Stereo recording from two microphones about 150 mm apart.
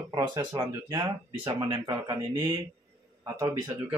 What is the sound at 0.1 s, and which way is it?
Speech, 30° right (ahead or behind).